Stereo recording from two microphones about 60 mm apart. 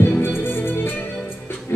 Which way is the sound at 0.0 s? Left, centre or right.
Left.